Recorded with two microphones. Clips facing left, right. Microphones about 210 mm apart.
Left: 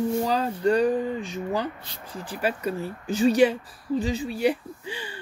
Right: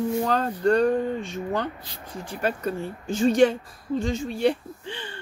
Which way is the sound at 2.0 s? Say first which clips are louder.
Even; 30° left (ahead or behind).